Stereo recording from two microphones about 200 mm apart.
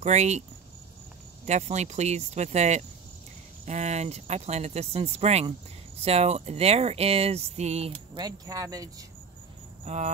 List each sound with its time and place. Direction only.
0.0 s speech: 35° right (ahead or behind)
1.4 s speech: 35° right (ahead or behind)
8.2 s speech: 20° right (ahead or behind)
9.9 s speech: 35° right (ahead or behind)